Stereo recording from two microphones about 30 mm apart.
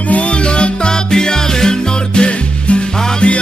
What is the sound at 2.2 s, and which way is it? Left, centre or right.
Music, left.